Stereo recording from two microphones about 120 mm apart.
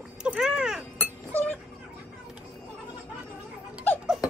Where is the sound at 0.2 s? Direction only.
5° right (ahead or behind).